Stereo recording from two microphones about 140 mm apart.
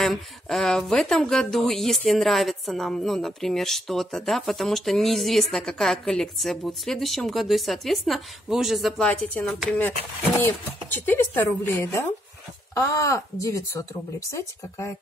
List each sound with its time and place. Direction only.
0.0 s a woman's voice: centre (ahead or behind); by 14.9 s 20° left (ahead or behind)